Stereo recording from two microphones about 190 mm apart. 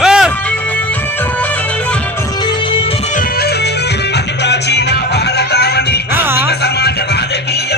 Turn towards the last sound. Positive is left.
turn(degrees=60)  # may be behind; listen again after turning